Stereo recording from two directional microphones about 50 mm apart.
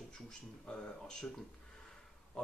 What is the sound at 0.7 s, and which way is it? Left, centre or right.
Speech, centre.